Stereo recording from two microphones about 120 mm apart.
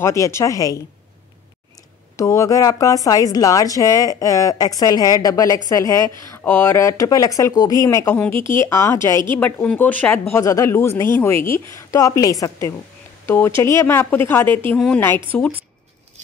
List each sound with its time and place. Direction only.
0.0 s a woman's voice: 25° left (ahead or behind)
2.1 s a woman's voice: 25° left (ahead or behind)
6.4 s a woman's voice: 15° left (ahead or behind)
8.1 s a woman's voice: 15° left (ahead or behind)
9.4 s a woman's voice: 15° left (ahead or behind)